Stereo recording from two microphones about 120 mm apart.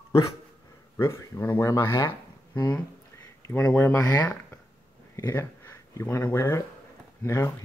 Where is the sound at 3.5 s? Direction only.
20° left (ahead or behind).